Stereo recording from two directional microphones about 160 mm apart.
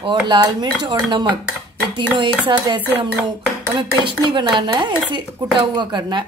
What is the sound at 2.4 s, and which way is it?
A man's voice, 25° right (ahead or behind).